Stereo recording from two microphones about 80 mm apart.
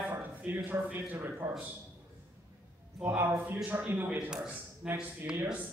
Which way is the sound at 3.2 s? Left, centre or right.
Right.